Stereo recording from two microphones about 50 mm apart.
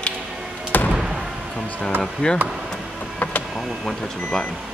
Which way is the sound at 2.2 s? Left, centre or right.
Left.